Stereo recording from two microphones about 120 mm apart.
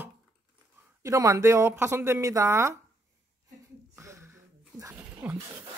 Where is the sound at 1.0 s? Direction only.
30° right (ahead or behind).